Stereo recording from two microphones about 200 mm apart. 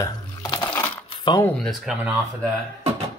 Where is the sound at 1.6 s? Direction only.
Centre (ahead or behind).